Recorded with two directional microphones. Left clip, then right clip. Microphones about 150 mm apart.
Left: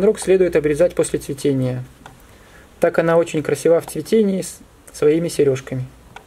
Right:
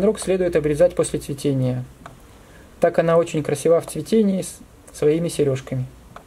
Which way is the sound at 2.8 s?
25° left (ahead or behind).